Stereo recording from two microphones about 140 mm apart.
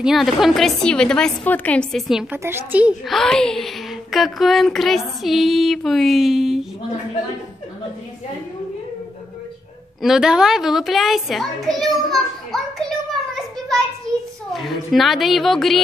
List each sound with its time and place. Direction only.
0.0 s speech: centre (ahead or behind)
2.3 s a woman's voice: 15° right (ahead or behind)
3.1 s speech: 5° left (ahead or behind)
10.0 s a child's voice: 5° right (ahead or behind)